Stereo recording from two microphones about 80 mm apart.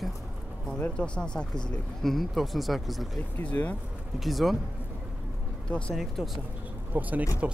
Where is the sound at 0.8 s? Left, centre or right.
Centre.